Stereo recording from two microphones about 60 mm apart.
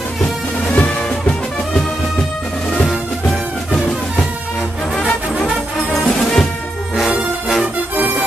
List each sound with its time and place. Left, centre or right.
0.2 s music: centre
3.3 s music: centre